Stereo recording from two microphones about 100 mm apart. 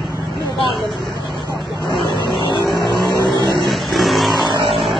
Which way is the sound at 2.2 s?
50° left (ahead or behind).